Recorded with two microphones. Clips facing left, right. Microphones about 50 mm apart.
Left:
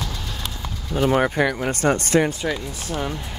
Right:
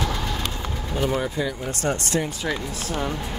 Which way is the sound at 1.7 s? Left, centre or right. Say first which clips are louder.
Left 5 dB; left.